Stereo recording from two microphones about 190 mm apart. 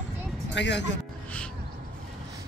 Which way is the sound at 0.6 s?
65° left (ahead or behind).